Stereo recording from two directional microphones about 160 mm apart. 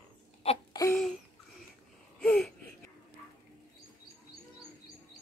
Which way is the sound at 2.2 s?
5° left (ahead or behind).